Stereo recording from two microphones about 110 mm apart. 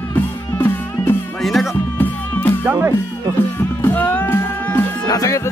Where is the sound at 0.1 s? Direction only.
20° left (ahead or behind).